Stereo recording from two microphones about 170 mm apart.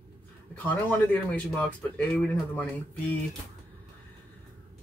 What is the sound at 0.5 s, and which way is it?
A man's voice, 10° left (ahead or behind).